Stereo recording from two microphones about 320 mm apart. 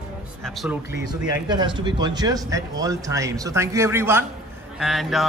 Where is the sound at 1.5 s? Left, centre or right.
Centre.